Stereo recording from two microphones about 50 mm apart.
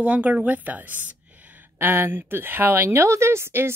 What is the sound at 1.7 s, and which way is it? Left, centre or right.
Speech, right.